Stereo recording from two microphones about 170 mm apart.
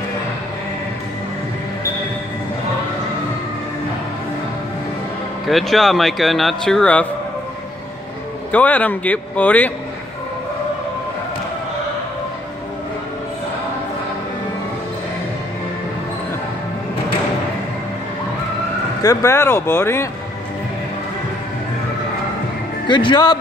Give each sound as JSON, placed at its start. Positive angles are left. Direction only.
{"t": 5.5, "sound": "a man's voice", "side_deg": 0}
{"t": 8.5, "sound": "speech", "side_deg": 10}
{"t": 19.0, "sound": "speech", "side_deg": 15}
{"t": 22.8, "sound": "speech", "side_deg": 25}